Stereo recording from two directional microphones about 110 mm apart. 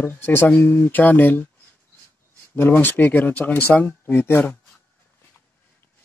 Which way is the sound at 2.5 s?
20° left (ahead or behind).